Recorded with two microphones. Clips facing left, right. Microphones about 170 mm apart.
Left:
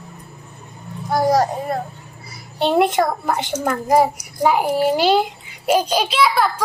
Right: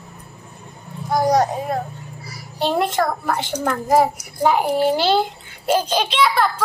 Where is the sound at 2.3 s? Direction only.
20° left (ahead or behind).